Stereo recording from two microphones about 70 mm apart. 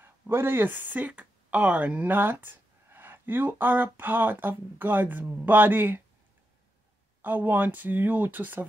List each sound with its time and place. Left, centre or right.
0.0 s speech: right
7.2 s speech: right